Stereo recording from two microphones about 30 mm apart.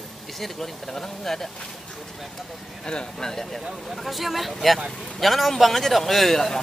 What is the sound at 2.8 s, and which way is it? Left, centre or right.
Speech, left.